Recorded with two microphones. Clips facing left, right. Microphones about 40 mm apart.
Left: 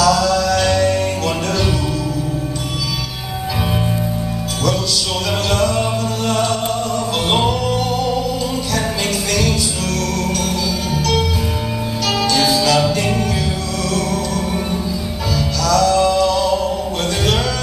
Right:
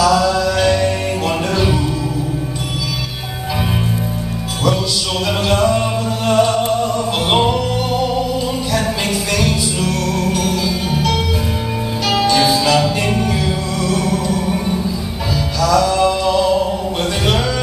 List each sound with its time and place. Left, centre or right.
0.0 s music: centre
5.5 s music: centre
9.3 s music: centre